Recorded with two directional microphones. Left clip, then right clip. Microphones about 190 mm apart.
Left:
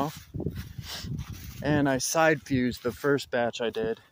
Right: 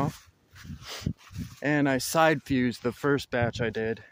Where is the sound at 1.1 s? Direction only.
50° left (ahead or behind).